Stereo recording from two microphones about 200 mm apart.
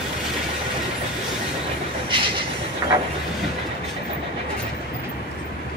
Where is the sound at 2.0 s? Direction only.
25° right (ahead or behind).